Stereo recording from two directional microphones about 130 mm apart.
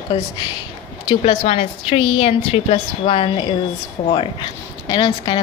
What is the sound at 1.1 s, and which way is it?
A woman's voice, 45° left (ahead or behind).